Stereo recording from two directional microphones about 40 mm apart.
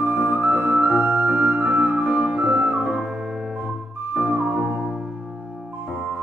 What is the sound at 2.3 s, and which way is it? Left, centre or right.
Flute, right.